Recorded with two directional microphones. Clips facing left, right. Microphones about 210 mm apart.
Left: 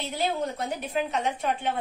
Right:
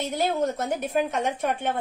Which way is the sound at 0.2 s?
45° right (ahead or behind).